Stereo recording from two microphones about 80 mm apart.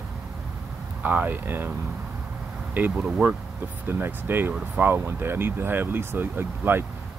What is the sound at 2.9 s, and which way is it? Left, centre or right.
Speech, centre.